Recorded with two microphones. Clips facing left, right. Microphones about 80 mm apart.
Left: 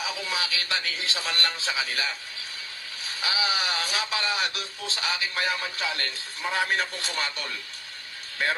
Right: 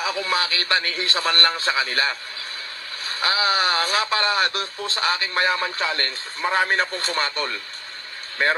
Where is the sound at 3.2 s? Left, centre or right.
Right.